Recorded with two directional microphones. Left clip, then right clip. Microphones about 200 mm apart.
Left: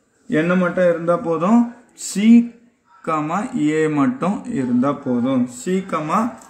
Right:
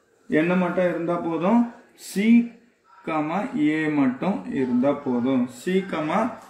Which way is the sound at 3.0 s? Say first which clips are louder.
Left 4 dB; 55° left (ahead or behind).